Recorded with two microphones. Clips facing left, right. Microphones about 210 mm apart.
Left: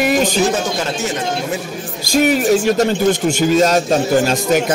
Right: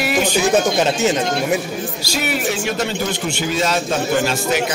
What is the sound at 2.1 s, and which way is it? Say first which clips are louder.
Speech: left 9 dB; 45° left (ahead or behind).